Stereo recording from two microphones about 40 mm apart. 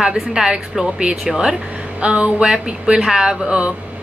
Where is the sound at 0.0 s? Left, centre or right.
Centre.